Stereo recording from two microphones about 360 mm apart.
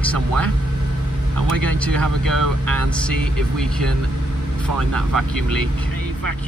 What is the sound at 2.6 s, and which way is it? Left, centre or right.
Speech, centre.